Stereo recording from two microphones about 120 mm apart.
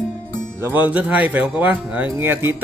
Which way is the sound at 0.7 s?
15° right (ahead or behind).